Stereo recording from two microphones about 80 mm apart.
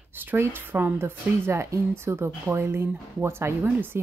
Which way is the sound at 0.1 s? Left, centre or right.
Right.